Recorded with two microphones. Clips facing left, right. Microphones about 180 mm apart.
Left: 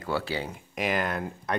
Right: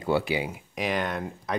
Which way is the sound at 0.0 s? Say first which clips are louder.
Right 4 dB; 20° right (ahead or behind).